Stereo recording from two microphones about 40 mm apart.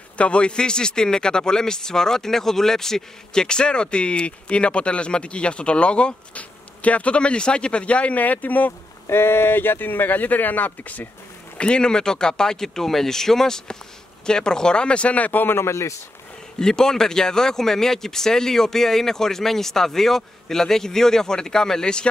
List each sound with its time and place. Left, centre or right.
0.2 s speech: left
9.1 s speech: left
11.5 s speech: left
15.4 s a man's voice: left
16.5 s speech: centre